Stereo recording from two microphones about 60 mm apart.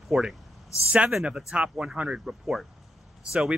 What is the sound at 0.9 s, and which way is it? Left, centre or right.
Speech, right.